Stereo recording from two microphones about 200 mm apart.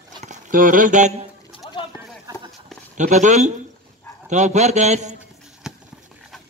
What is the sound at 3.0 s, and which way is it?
A man's voice, 35° right (ahead or behind).